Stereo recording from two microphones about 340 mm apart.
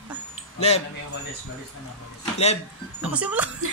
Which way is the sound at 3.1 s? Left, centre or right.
Centre.